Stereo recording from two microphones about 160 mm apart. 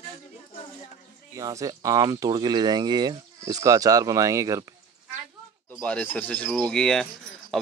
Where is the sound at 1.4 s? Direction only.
20° right (ahead or behind).